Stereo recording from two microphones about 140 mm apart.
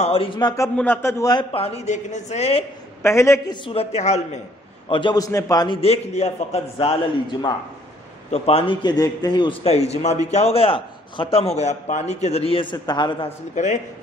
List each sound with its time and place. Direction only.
0.0 s a man's voice: 40° left (ahead or behind)
0.7 s a man's voice: 15° left (ahead or behind)
1.5 s a man's voice: 45° left (ahead or behind)
3.0 s a man's voice: 20° left (ahead or behind)
3.6 s a man's voice: 45° left (ahead or behind)
4.8 s a man's voice: 35° left (ahead or behind)
5.8 s a man's voice: 50° left (ahead or behind)
8.3 s a man's voice: 45° left (ahead or behind)
8.8 s a man's voice: 30° left (ahead or behind)
13.6 s a man's voice: 60° left (ahead or behind)